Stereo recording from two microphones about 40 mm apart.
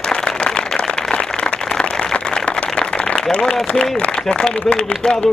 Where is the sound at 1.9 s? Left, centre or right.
Centre.